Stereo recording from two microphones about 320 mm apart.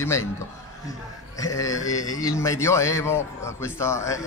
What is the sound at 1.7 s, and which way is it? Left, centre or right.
Speech, left.